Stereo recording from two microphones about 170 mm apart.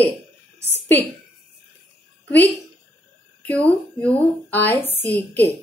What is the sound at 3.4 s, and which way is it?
A woman's voice, 10° left (ahead or behind).